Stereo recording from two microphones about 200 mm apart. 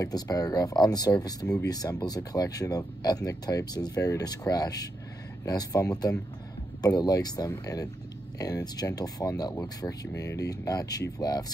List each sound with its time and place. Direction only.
0.0 s speech: 20° left (ahead or behind)